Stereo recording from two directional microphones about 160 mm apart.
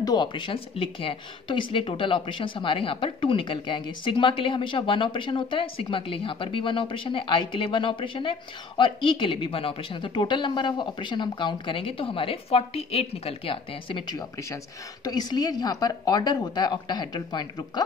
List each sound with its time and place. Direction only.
0.0 s a woman's voice: 25° left (ahead or behind)